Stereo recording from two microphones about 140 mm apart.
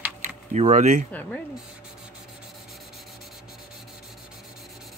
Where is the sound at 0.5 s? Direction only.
55° right (ahead or behind).